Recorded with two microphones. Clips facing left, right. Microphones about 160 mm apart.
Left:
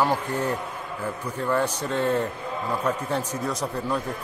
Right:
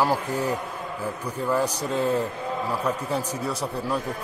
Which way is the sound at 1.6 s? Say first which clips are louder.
Even; 35° right (ahead or behind).